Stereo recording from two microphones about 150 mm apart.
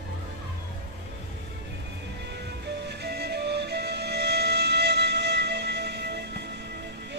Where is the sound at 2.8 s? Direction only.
90° right.